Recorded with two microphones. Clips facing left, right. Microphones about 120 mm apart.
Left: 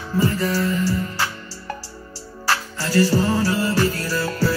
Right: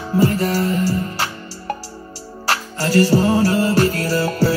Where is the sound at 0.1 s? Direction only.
45° right (ahead or behind).